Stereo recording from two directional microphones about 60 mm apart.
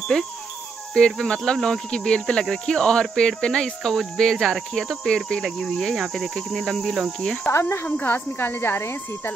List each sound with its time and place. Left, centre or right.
0.9 s speech: centre
3.8 s cricket: centre
4.2 s speech: centre
5.4 s cricket: centre
7.6 s speech: left